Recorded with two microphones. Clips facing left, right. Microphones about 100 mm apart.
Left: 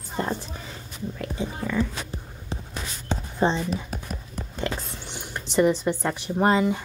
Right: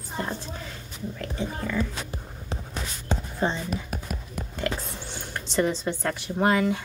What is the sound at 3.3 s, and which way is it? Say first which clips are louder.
Speech: left 5 dB; 30° left (ahead or behind).